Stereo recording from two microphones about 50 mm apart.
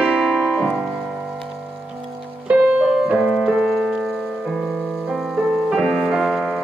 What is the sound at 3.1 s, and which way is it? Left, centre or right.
Music, centre.